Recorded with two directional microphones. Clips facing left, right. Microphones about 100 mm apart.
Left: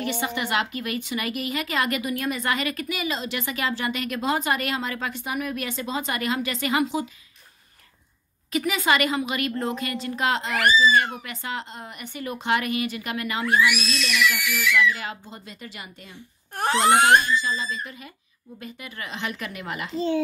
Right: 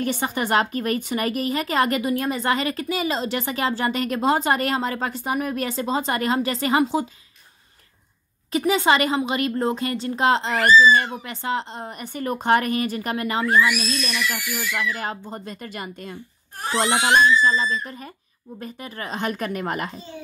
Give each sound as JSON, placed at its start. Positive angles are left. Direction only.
{"t": 0.0, "sound": "a woman's voice", "side_deg": -40}
{"t": 8.5, "sound": "a woman's voice", "side_deg": -30}
{"t": 14.4, "sound": "speech", "side_deg": 75}
{"t": 14.7, "sound": "speech", "side_deg": -40}
{"t": 16.5, "sound": "speech", "side_deg": 55}
{"t": 17.4, "sound": "a woman's voice", "side_deg": -45}
{"t": 19.9, "sound": "a child's voice", "side_deg": 90}